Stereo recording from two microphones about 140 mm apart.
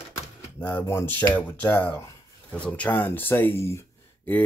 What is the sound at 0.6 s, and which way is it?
Speech, 15° left (ahead or behind).